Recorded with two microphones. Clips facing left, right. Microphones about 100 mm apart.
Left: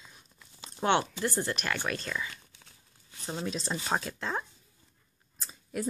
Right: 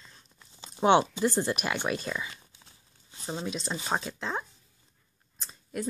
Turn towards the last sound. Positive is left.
turn(degrees=5)  # may be behind; listen again after turning